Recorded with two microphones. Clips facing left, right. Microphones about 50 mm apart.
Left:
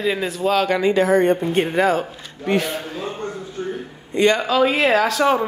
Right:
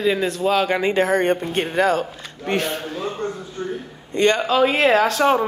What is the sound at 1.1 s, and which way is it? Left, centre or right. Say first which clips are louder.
Speech: left 3 dB; right.